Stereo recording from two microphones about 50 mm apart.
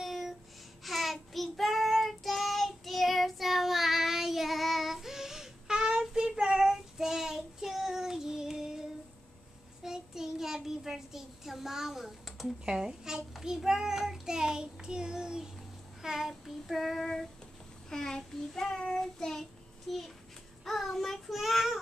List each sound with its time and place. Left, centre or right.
0.0 s a sound: centre
0.8 s child singing: centre
9.8 s child singing: centre
12.6 s a child's voice: centre
13.4 s child singing: centre
19.9 s a sound: centre
20.6 s child singing: centre